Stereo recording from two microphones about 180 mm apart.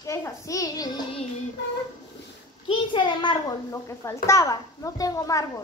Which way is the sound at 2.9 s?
25° left (ahead or behind).